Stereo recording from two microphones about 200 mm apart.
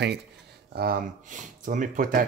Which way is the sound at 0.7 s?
45° right (ahead or behind).